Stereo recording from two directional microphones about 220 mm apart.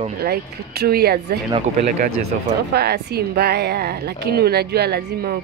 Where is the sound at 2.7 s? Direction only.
45° right (ahead or behind).